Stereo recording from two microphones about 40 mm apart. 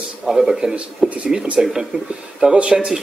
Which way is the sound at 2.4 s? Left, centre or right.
Right.